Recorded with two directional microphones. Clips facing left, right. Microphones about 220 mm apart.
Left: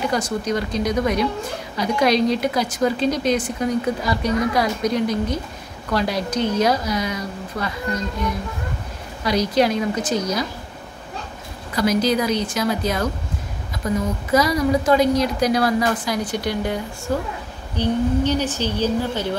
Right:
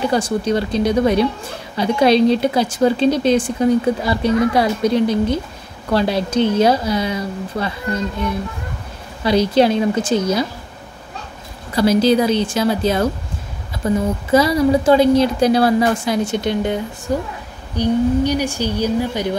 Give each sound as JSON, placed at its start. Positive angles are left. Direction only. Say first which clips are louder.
{"t": 0.1, "sound": "a woman's voice", "louder": "right 5 dB", "side_deg": -30}
{"t": 9.2, "sound": "a woman's voice", "louder": "right 4 dB", "side_deg": -30}
{"t": 11.7, "sound": "a woman's voice", "louder": "right 5 dB", "side_deg": -30}